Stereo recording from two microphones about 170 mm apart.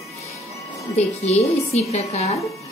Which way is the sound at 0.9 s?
40° left (ahead or behind).